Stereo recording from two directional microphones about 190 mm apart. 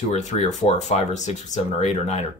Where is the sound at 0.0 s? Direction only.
40° left (ahead or behind).